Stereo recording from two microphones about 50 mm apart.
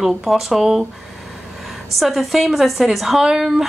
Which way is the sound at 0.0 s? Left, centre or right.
Centre.